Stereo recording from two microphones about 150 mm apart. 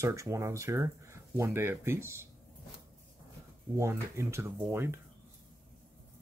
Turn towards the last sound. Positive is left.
turn(degrees=-15)  # may be behind; listen again after turning